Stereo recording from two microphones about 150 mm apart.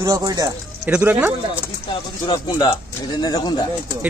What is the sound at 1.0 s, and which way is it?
Speech, 10° right (ahead or behind).